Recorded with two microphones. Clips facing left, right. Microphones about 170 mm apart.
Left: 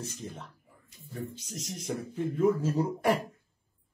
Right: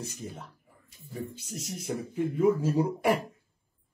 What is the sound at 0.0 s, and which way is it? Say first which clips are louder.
Speech: right 1 dB; 10° right (ahead or behind).